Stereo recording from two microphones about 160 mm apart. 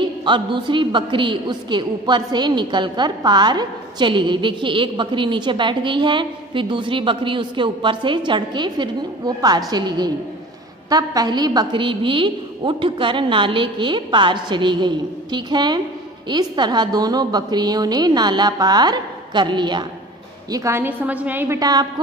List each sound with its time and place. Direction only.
0.0 s a woman's voice: 30° right (ahead or behind)
20.5 s a woman's voice: 15° right (ahead or behind)
21.5 s a woman's voice: 25° right (ahead or behind)